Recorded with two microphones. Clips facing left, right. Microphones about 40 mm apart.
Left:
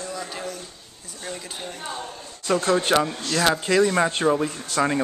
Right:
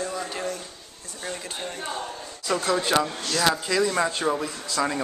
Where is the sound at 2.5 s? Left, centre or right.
Centre.